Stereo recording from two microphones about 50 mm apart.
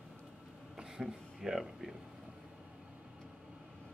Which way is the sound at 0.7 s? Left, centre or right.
Centre.